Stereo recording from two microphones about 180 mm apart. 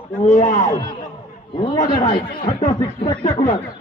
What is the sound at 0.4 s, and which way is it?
Speech, 40° left (ahead or behind).